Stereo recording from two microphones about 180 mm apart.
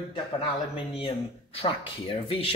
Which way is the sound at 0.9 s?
30° left (ahead or behind).